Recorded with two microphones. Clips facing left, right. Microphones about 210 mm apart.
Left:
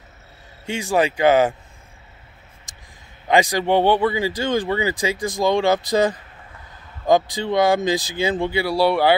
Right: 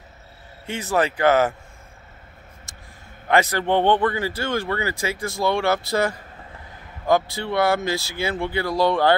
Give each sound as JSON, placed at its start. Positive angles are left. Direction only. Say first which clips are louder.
{"t": 0.7, "sound": "a man's voice", "louder": "left 2 dB", "side_deg": 15}
{"t": 2.7, "sound": "a sound", "louder": "right 2 dB", "side_deg": 15}
{"t": 3.3, "sound": "a man's voice", "louder": "left 2 dB", "side_deg": 15}